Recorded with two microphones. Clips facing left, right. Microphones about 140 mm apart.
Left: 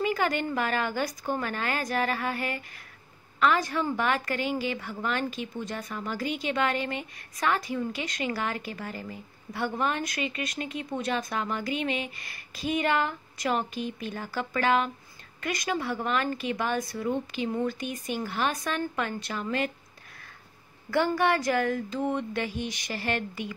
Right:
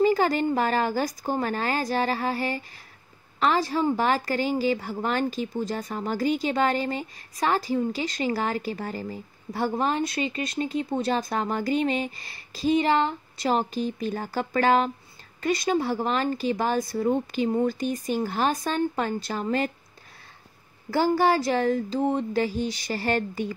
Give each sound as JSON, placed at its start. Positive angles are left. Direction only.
{"t": 0.0, "sound": "a woman's voice", "side_deg": -35}
{"t": 20.9, "sound": "a woman's voice", "side_deg": -35}